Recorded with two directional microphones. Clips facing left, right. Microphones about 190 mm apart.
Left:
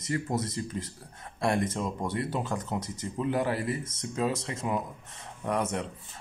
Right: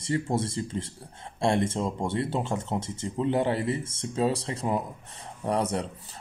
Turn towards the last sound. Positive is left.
turn(degrees=-35)  # may be behind; listen again after turning